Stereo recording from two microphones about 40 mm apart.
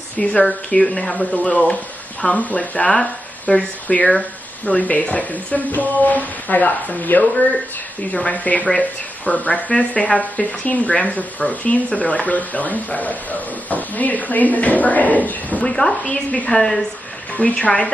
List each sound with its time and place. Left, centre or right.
0.2 s a woman's voice: left
1.1 s speech: left
8.1 s speech: left
15.7 s a woman's voice: centre
17.6 s a woman's voice: left